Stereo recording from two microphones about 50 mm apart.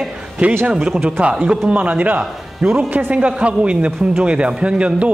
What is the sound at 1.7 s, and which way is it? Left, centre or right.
Speech, right.